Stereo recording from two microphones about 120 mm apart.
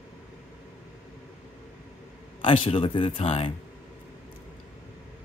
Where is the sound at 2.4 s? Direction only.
50° left (ahead or behind).